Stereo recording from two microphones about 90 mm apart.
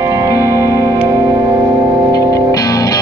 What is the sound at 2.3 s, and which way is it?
Music, 45° left (ahead or behind).